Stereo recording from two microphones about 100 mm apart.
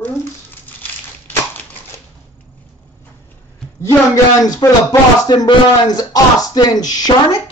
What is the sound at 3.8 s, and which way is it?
Speech, 35° left (ahead or behind).